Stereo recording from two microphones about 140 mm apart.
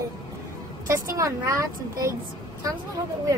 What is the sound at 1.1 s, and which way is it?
Speech, 20° right (ahead or behind).